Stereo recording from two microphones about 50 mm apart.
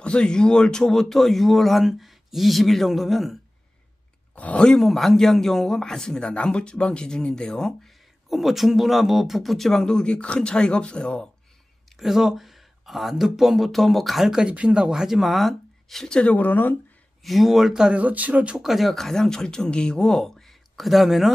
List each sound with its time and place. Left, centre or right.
0.0 s a man's voice: centre
4.6 s a man's voice: centre
4.8 s a man's voice: centre
8.3 s a man's voice: centre
12.0 s speech: centre
14.5 s speech: right; by 16.1 s centre
16.3 s speech: left
17.2 s speech: centre
17.9 s speech: right
18.6 s a man's voice: centre